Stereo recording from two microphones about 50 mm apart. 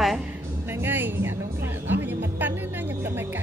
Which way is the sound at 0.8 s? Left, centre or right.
Right.